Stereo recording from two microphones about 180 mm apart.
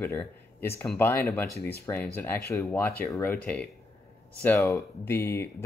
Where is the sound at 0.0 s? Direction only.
10° left (ahead or behind).